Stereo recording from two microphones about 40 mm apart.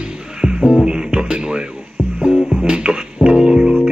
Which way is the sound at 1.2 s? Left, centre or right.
Right.